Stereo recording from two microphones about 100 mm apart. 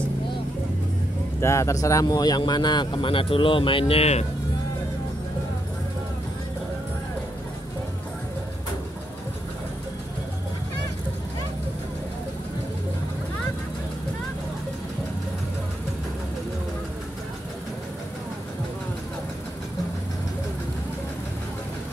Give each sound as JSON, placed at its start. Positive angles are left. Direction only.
{"t": 1.4, "sound": "speech", "side_deg": 30}